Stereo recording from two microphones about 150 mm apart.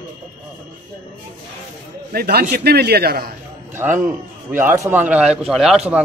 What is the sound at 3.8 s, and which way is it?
A man's voice, 15° right (ahead or behind).